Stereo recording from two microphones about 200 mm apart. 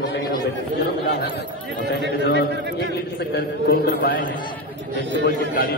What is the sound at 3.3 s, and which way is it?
A man's voice, 50° left (ahead or behind).